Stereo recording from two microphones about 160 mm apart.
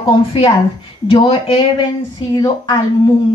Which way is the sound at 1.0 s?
35° left (ahead or behind).